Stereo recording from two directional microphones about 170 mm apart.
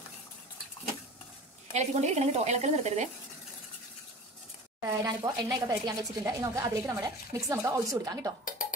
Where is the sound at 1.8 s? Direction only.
40° right (ahead or behind).